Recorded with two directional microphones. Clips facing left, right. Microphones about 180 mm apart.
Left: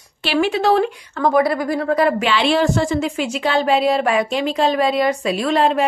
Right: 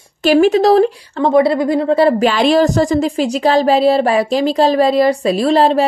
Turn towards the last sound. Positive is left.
turn(degrees=-35)  # may be behind; listen again after turning